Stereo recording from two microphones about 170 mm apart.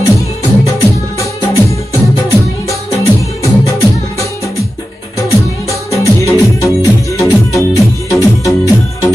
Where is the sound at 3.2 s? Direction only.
15° left (ahead or behind).